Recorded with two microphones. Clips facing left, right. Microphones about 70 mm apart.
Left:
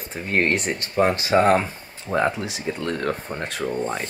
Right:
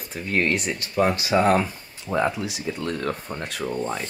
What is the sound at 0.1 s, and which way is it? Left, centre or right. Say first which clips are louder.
Speech: left 2 dB; left.